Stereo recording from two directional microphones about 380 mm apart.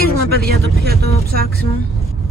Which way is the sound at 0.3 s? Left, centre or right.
Right.